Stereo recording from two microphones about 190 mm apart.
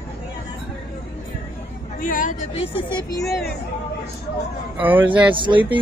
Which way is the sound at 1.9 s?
45° left (ahead or behind).